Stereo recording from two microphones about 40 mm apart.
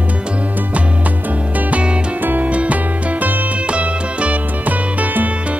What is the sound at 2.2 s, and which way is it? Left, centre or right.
Music, right.